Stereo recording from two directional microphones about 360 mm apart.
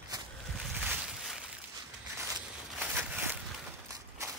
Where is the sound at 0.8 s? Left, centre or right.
Centre.